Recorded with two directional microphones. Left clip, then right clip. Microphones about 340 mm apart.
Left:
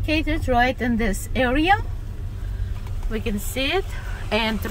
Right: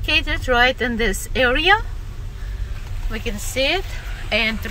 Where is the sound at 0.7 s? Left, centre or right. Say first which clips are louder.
Right 4 dB; right.